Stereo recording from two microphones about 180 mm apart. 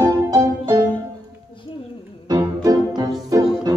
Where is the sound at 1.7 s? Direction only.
30° left (ahead or behind).